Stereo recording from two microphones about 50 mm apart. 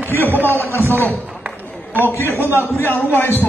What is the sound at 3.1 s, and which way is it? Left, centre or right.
Speech, left.